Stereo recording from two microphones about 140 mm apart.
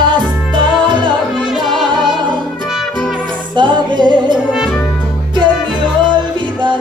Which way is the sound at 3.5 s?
35° right (ahead or behind).